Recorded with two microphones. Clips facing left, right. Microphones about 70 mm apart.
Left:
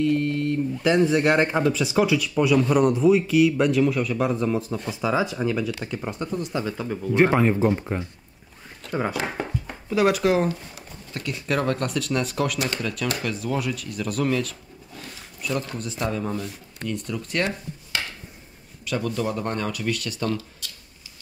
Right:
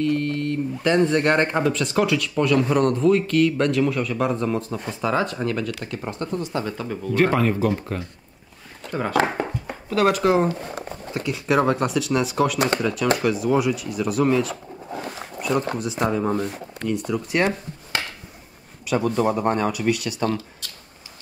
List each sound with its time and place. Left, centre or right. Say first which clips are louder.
0.0 s speech: even; centre
7.2 s speech: left 1 dB; centre
8.8 s a sound: even; centre
9.8 s speech: right 1 dB; centre
10.6 s speech: right 10 dB; right
11.2 s speech: right 5 dB; centre
12.9 s speech: right 7 dB; centre
14.5 s a sound: right 11 dB; right
15.4 s speech: right 5 dB; right
16.8 s speech: right 5 dB; centre
18.9 s speech: right 5 dB; right
20.2 s speech: right 1 dB; right